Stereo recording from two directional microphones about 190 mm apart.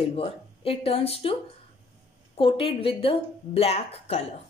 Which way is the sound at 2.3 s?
30° left (ahead or behind).